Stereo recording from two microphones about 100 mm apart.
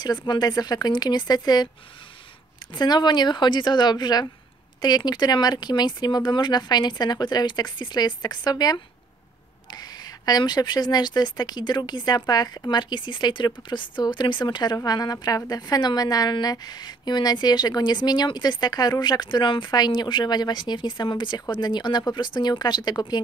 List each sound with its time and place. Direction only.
0.0 s a woman's voice: 45° left (ahead or behind)
2.7 s a woman's voice: 45° left (ahead or behind)